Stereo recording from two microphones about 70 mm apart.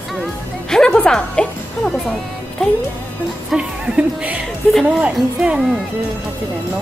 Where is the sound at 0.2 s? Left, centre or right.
Centre.